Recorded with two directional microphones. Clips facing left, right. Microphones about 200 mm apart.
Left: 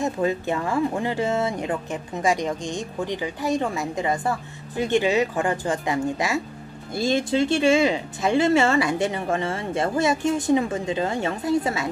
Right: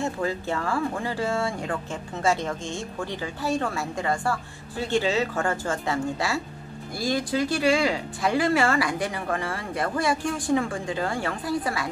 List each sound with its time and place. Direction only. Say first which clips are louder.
0.0 s speech: left 4 dB; 20° left (ahead or behind)